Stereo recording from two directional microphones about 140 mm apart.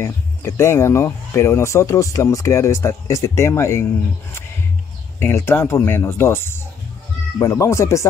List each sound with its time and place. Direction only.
0.0 s speech: 15° left (ahead or behind)
5.2 s speech: 20° left (ahead or behind)